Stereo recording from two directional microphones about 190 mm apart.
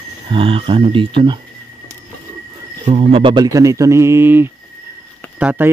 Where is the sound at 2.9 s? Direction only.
30° right (ahead or behind); by 5.7 s 10° right (ahead or behind).